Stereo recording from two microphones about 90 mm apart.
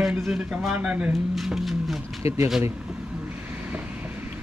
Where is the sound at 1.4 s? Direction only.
Centre (ahead or behind).